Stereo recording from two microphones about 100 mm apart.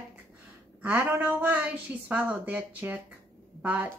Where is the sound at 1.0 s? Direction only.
20° right (ahead or behind).